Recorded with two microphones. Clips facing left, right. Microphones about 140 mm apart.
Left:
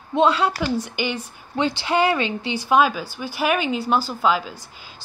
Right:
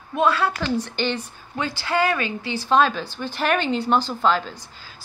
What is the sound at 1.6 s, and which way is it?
A woman's voice, 20° left (ahead or behind).